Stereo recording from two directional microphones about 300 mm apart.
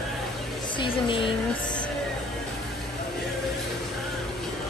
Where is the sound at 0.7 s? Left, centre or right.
Centre.